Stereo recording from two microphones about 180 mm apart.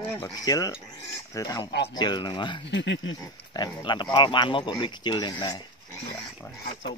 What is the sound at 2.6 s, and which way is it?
Speech, 75° left (ahead or behind).